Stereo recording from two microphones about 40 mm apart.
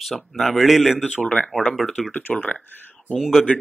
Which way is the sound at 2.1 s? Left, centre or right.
Left.